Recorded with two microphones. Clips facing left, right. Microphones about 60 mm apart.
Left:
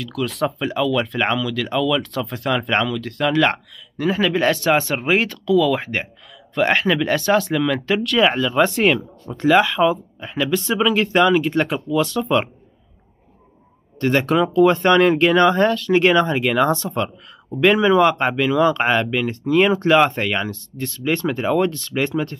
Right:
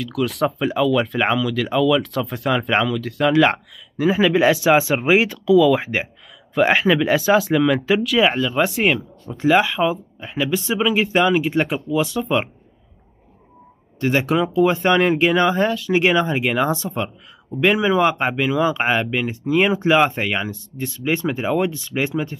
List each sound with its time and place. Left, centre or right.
0.0 s speech: centre
13.9 s speech: centre